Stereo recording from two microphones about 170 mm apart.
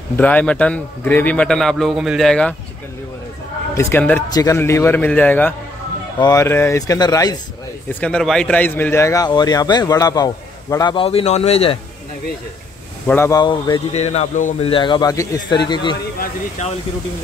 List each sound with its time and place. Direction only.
0.2 s a man's voice: 10° left (ahead or behind)
3.7 s a man's voice: 10° left (ahead or behind)
6.1 s a man's voice: 20° left (ahead or behind)
7.9 s a man's voice: 5° left (ahead or behind); by 11.8 s 35° left (ahead or behind)
13.0 s a man's voice: 15° left (ahead or behind)
13.9 s speech: 40° left (ahead or behind)
14.6 s a man's voice: 30° left (ahead or behind)
16.2 s speech: 45° left (ahead or behind)